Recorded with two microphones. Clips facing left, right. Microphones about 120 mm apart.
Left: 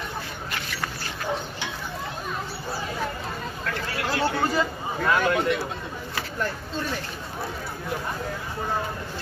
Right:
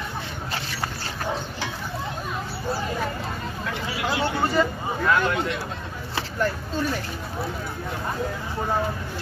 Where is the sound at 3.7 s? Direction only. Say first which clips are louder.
Right 1 dB; 15° right (ahead or behind).